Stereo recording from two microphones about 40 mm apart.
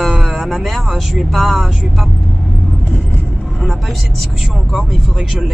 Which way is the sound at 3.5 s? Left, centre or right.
Centre.